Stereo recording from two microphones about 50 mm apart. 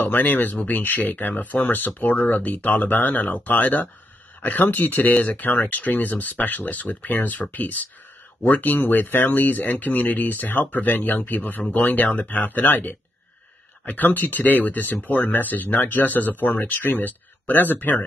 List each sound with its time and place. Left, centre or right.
0.0 s speech: left